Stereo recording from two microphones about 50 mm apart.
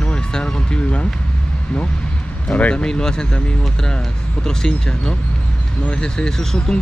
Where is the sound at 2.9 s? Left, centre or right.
Centre.